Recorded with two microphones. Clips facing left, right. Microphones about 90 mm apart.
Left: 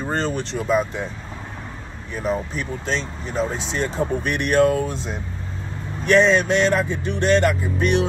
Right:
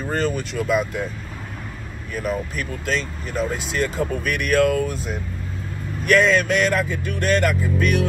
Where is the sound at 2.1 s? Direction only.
30° left (ahead or behind).